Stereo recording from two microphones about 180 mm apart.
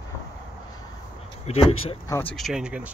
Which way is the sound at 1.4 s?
35° left (ahead or behind).